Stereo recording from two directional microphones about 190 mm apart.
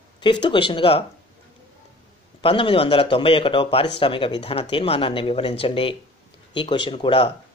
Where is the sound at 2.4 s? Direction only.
30° left (ahead or behind).